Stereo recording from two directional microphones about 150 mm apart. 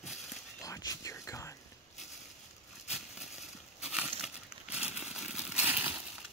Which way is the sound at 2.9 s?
5° right (ahead or behind).